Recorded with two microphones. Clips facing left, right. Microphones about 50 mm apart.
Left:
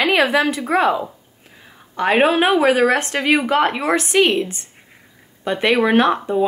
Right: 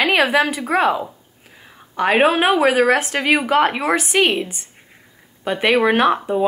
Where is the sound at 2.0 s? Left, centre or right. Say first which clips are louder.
Even; centre.